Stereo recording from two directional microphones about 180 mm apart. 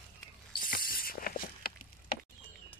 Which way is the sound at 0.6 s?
50° left (ahead or behind).